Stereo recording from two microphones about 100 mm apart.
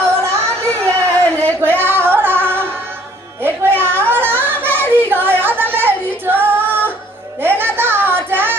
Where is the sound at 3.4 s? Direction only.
20° right (ahead or behind).